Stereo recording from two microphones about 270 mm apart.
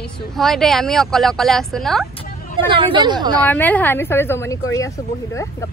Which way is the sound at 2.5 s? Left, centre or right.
Centre.